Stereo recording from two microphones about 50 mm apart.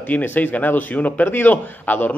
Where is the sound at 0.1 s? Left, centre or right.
Left.